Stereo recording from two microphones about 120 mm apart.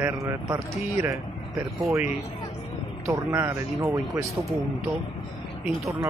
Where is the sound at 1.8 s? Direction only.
25° right (ahead or behind).